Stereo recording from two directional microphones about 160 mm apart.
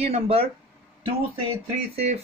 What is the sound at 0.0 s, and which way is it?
Speech, 40° right (ahead or behind).